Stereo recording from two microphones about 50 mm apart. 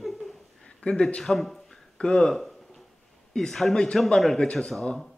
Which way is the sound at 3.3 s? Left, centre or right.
Centre.